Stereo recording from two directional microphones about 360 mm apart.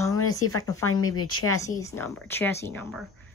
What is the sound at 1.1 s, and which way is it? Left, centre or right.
Speech, left.